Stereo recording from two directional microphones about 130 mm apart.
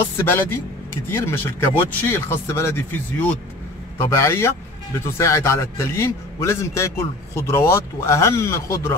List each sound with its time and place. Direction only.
0.2 s a man's voice: 20° left (ahead or behind)